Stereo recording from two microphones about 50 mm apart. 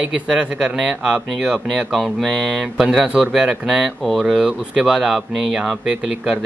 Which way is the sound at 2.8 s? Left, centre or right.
Centre.